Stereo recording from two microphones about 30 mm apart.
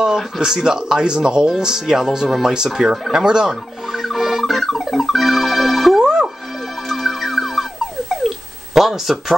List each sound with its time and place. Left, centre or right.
0.0 s speech: right
2.9 s speech: centre
3.4 s music: centre
5.9 s music: centre
6.9 s music: centre
8.7 s speech: centre